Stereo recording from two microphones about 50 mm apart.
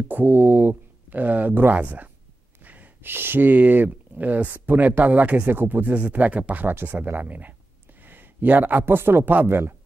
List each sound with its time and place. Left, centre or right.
0.1 s speech: right
2.6 s gasp: right
3.1 s speech: right
8.0 s a sound: right
8.9 s speech: right
9.2 s speech: right